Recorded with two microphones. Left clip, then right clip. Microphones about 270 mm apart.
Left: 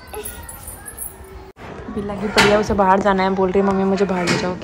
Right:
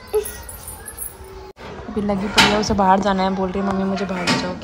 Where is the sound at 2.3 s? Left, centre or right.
Centre.